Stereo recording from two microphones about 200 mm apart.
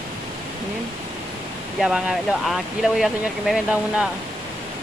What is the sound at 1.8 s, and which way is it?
Speech, centre (ahead or behind).